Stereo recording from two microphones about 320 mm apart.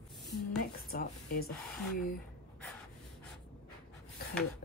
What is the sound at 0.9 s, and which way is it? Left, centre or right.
Speech, left.